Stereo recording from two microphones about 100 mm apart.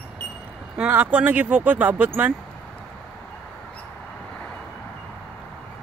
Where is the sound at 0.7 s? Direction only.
15° right (ahead or behind).